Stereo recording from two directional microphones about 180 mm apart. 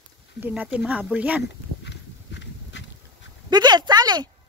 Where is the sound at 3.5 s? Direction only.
25° right (ahead or behind).